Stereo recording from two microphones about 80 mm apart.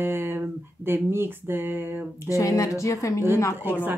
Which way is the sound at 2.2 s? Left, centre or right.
Left.